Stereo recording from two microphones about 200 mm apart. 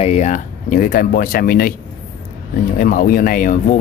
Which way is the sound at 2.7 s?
45° left (ahead or behind).